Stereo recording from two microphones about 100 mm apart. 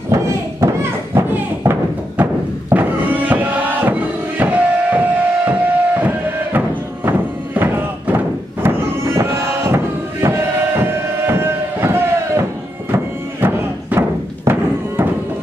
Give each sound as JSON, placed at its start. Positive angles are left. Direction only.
{"t": 0.1, "sound": "thump", "side_deg": -25}
{"t": 2.7, "sound": "music", "side_deg": -15}